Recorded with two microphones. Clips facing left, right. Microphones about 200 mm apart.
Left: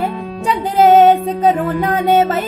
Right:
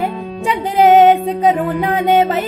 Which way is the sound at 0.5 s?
15° right (ahead or behind).